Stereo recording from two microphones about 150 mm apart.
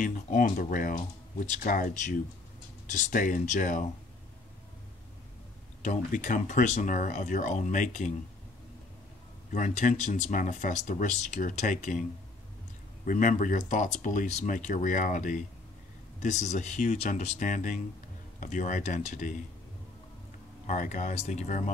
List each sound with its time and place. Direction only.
0.0 s speech: 60° left (ahead or behind)
5.8 s speech: 60° left (ahead or behind)
9.5 s speech: 55° left (ahead or behind)
20.6 s speech: 60° left (ahead or behind)